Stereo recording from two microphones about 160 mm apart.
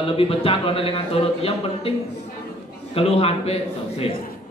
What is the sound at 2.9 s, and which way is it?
Speech, 40° left (ahead or behind).